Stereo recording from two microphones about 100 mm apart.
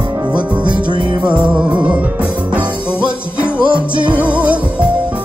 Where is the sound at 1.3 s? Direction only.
10° right (ahead or behind).